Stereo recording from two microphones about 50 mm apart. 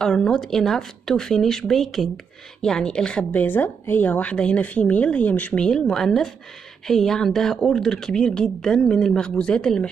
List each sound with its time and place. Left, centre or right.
0.0 s speech: centre
2.6 s speech: centre
3.3 s a woman's voice: left
5.6 s speech: centre